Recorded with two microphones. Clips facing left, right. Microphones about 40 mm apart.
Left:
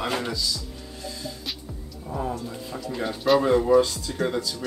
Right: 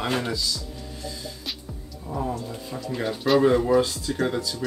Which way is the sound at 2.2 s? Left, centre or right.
Centre.